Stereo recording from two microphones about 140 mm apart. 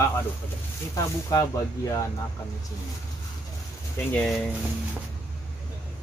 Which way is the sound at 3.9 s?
10° left (ahead or behind).